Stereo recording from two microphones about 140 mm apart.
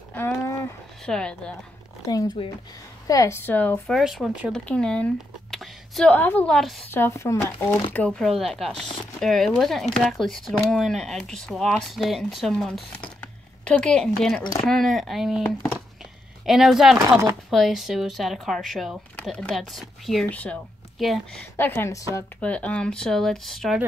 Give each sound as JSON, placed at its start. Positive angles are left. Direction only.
{"t": 0.4, "sound": "a sound", "side_deg": 20}
{"t": 1.0, "sound": "speech", "side_deg": 5}
{"t": 2.0, "sound": "speech", "side_deg": 30}
{"t": 3.1, "sound": "a woman's voice", "side_deg": 20}
{"t": 3.9, "sound": "speech", "side_deg": 0}
{"t": 4.6, "sound": "a sound", "side_deg": 5}
{"t": 6.1, "sound": "a woman's voice", "side_deg": 10}
{"t": 6.9, "sound": "a woman's voice", "side_deg": 15}
{"t": 7.9, "sound": "speech", "side_deg": 5}
{"t": 16.4, "sound": "speech", "side_deg": 0}
{"t": 20.2, "sound": "a woman's voice", "side_deg": 10}
{"t": 21.5, "sound": "a woman's voice", "side_deg": 15}
{"t": 22.4, "sound": "speech", "side_deg": 10}